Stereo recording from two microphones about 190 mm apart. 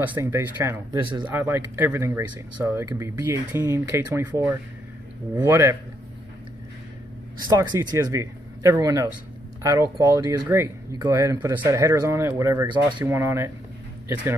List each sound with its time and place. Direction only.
0.0 s speech: 10° right (ahead or behind)
7.4 s speech: 20° right (ahead or behind)